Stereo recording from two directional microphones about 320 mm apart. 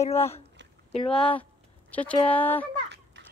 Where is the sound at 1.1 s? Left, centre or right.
Centre.